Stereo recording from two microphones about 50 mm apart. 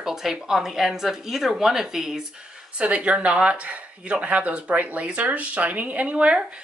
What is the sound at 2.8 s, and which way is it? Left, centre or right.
Speech, right.